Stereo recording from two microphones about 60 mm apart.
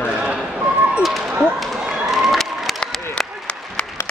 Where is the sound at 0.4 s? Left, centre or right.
Centre.